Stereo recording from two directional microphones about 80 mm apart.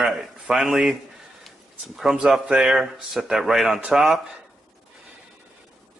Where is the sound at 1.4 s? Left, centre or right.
Centre.